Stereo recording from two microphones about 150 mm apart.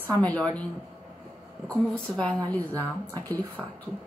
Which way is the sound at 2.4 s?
25° right (ahead or behind).